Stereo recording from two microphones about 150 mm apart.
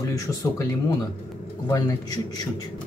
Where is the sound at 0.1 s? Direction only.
20° left (ahead or behind).